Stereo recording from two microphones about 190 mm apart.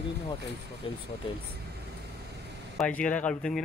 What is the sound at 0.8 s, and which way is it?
Speech, 25° left (ahead or behind).